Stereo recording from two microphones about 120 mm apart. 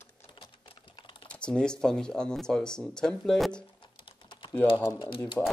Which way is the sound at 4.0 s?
45° left (ahead or behind).